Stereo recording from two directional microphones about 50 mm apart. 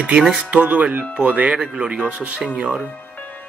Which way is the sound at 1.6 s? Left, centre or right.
Centre.